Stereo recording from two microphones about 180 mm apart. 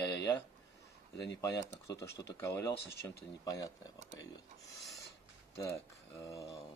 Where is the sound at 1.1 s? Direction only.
75° left (ahead or behind).